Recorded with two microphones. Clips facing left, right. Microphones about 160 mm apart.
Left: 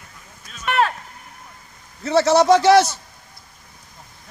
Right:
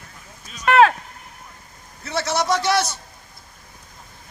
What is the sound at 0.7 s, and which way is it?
Vehicle, 90° right.